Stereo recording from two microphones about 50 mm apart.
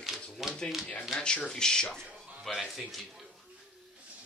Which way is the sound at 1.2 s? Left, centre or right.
Centre.